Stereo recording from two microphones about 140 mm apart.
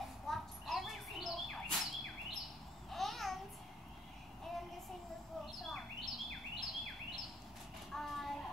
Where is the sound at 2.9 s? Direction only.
Centre (ahead or behind).